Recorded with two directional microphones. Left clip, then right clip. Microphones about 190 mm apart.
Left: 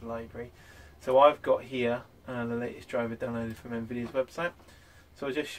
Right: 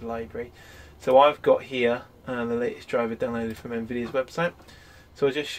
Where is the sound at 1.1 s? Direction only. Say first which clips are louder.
Right 4 dB; 45° right (ahead or behind).